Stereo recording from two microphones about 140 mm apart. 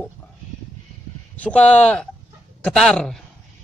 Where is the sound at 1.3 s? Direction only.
10° left (ahead or behind).